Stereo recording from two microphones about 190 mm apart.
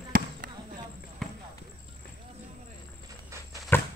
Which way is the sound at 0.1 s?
50° right (ahead or behind).